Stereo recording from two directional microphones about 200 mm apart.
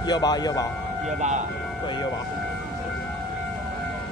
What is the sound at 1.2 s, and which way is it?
Speech, 35° right (ahead or behind).